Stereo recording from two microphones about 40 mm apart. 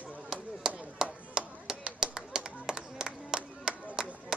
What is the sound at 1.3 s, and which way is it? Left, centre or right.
Music, centre.